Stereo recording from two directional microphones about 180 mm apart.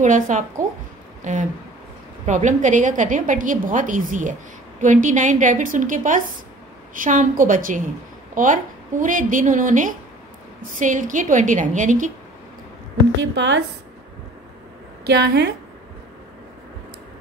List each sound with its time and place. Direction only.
0.0 s a woman's voice: 45° right (ahead or behind)
13.2 s speech: 75° right (ahead or behind)
15.0 s a woman's voice: 65° right (ahead or behind)